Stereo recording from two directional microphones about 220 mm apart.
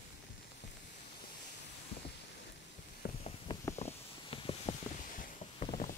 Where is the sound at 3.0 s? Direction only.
45° left (ahead or behind).